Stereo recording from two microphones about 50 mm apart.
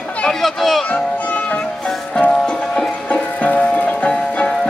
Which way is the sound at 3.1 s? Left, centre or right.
Left.